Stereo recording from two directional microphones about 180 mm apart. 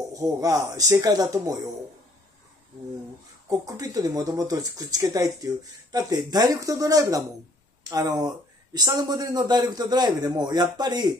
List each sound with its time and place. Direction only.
0.1 s speech: 20° right (ahead or behind)
3.4 s speech: 20° right (ahead or behind)